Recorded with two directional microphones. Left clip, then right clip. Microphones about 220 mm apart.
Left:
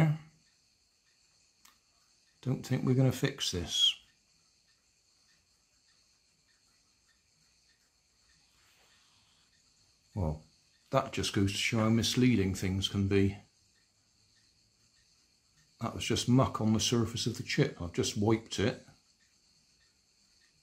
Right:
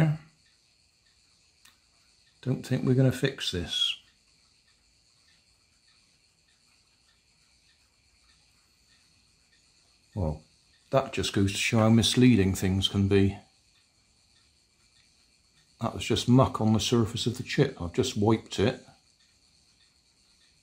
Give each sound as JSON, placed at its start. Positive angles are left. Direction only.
{"t": 2.4, "sound": "speech", "side_deg": -5}
{"t": 10.9, "sound": "speech", "side_deg": -5}
{"t": 15.8, "sound": "speech", "side_deg": -10}